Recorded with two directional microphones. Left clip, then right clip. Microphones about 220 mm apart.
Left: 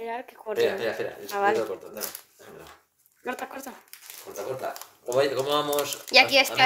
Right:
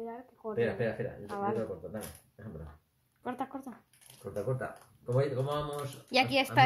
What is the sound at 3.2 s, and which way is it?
Speech, 10° left (ahead or behind).